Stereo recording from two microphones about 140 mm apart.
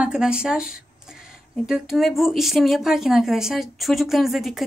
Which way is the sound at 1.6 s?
5° right (ahead or behind).